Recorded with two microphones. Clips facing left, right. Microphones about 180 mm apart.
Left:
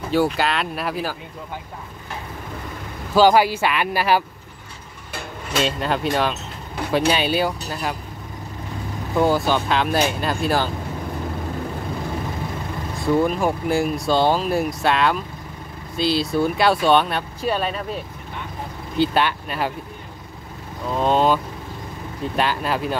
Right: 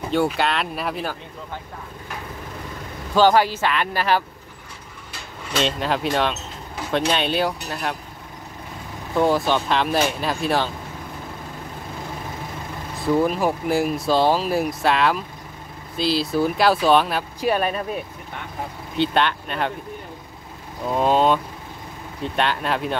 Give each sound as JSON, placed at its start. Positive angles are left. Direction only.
{"t": 0.1, "sound": "speech", "side_deg": 0}
{"t": 3.2, "sound": "speech", "side_deg": 10}
{"t": 5.6, "sound": "speech", "side_deg": 0}
{"t": 9.1, "sound": "speech", "side_deg": 0}
{"t": 13.0, "sound": "speech", "side_deg": 0}
{"t": 17.4, "sound": "speech", "side_deg": -10}
{"t": 18.9, "sound": "speech", "side_deg": 5}
{"t": 20.9, "sound": "speech", "side_deg": -5}